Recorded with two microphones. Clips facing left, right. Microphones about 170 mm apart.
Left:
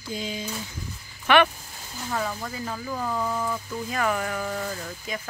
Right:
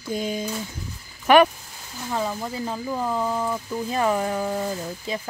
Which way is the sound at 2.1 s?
15° right (ahead or behind).